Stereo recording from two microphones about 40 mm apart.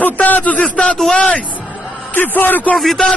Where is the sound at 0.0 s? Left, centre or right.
Left.